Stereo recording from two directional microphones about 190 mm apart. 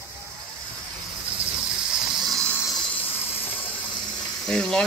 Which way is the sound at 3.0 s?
30° left (ahead or behind).